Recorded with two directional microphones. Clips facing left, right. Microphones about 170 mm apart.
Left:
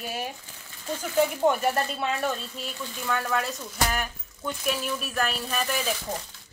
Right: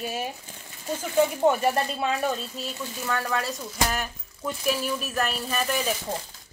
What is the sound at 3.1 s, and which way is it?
Speech, centre (ahead or behind).